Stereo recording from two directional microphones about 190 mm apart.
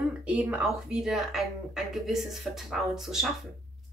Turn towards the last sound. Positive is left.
turn(degrees=0)  # may be behind; listen again after turning